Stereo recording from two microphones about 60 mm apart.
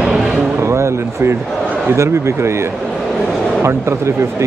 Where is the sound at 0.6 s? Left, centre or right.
Right.